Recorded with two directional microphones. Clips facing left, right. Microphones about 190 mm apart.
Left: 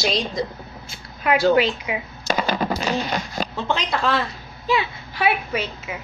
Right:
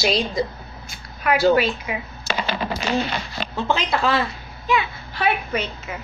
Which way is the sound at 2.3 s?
45° left (ahead or behind).